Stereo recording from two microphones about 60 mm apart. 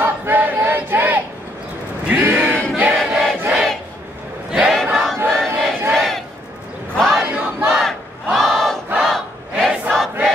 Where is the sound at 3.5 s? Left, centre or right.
Centre.